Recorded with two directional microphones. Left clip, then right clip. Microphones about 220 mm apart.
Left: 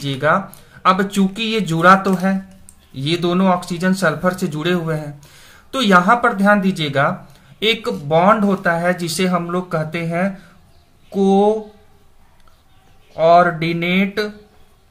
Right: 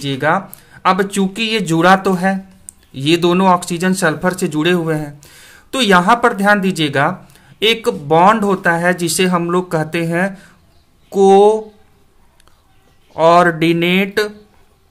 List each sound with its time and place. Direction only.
0.0 s speech: 30° right (ahead or behind)
13.1 s speech: 40° right (ahead or behind)